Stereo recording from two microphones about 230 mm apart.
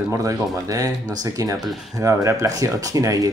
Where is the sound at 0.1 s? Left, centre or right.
Centre.